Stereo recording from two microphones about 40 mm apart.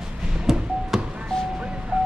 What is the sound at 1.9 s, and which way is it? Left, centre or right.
Vehicle, right.